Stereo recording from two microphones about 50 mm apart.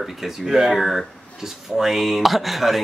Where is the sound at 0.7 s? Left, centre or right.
Centre.